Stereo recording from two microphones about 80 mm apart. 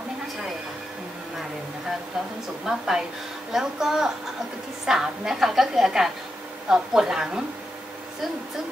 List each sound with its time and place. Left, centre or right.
2.6 s a woman's voice: centre